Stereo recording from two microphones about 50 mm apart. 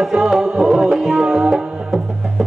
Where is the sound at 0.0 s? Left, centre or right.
Centre.